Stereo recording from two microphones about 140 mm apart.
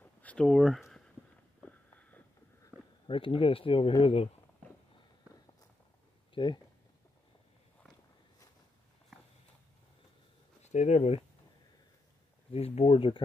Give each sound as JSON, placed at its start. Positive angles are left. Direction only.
{"t": 0.0, "sound": "a sound", "side_deg": 10}
{"t": 3.1, "sound": "speech", "side_deg": 40}
{"t": 6.3, "sound": "speech", "side_deg": 35}
{"t": 10.6, "sound": "speech", "side_deg": 55}
{"t": 12.5, "sound": "speech", "side_deg": 45}